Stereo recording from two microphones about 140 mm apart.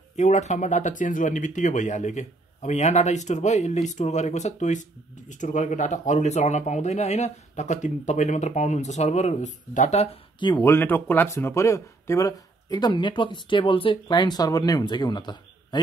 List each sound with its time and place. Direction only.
0.1 s speech: 55° left (ahead or behind)
10.6 s speech: 15° left (ahead or behind); by 15.8 s 30° left (ahead or behind)